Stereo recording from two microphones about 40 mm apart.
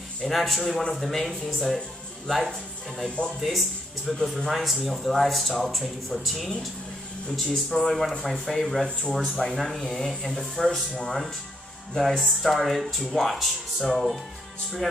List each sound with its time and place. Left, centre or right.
0.2 s speech: centre
4.1 s speech: centre
4.5 s speech: centre
9.0 s speech: centre
9.5 s speech: centre
12.2 s speech: centre